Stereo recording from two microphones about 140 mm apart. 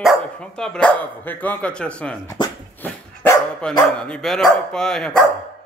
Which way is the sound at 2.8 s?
15° left (ahead or behind).